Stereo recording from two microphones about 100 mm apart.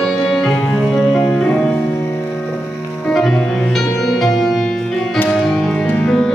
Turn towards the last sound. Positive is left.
turn(degrees=10)  # may be behind; listen again after turning